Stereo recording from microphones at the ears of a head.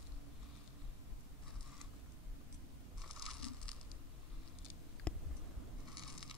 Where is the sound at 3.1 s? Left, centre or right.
Left.